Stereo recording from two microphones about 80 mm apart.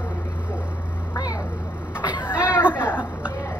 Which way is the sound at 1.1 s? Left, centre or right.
Left.